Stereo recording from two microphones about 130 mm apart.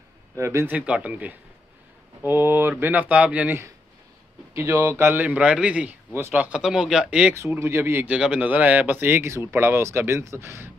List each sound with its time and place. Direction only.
0.4 s a man's voice: 20° right (ahead or behind)
7.3 s speech: 20° right (ahead or behind)